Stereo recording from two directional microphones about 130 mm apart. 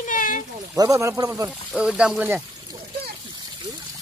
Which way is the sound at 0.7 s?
25° right (ahead or behind).